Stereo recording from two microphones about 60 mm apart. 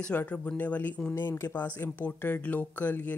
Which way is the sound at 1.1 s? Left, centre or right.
Left.